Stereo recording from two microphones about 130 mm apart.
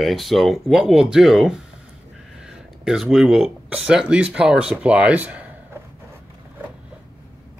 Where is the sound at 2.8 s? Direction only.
5° right (ahead or behind).